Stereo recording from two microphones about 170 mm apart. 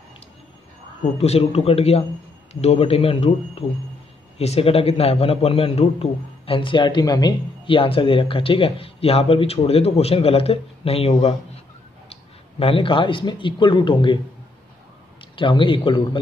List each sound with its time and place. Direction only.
1.1 s a man's voice: 40° left (ahead or behind)
15.3 s a man's voice: 30° left (ahead or behind)